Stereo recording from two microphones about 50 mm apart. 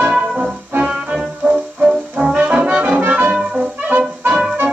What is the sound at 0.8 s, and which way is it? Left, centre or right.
Music, right.